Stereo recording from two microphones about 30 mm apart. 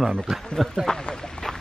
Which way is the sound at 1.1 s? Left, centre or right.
Left.